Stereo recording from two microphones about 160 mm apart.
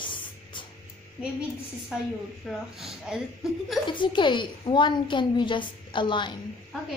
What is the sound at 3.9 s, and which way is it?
A woman's voice, 30° left (ahead or behind).